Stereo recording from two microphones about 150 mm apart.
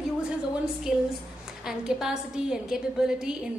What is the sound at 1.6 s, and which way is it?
A woman's voice, 5° right (ahead or behind).